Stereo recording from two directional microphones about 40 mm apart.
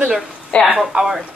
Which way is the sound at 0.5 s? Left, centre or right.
Left.